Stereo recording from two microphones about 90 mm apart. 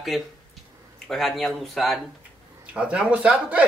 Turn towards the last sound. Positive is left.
turn(degrees=-15)  # may be behind; listen again after turning